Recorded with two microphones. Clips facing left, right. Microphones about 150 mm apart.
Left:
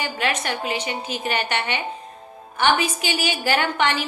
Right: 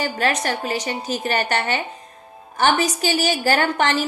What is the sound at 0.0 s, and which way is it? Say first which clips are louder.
A woman's voice: right 3 dB; 40° right (ahead or behind).